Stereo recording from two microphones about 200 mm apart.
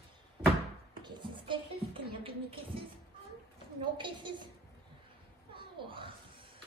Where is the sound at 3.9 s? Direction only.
25° right (ahead or behind).